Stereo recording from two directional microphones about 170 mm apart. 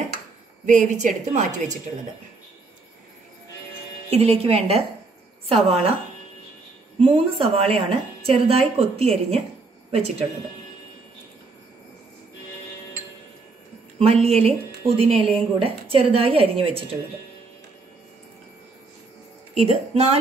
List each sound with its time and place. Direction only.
0.7 s a woman's voice: 45° right (ahead or behind)
4.1 s a woman's voice: 35° right (ahead or behind)
7.0 s a woman's voice: 35° right (ahead or behind)
13.9 s a woman's voice: 35° right (ahead or behind)
19.5 s a woman's voice: 40° right (ahead or behind)